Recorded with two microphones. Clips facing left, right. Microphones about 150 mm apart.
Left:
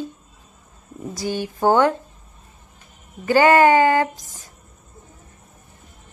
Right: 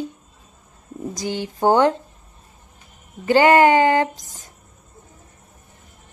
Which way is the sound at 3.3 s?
20° right (ahead or behind).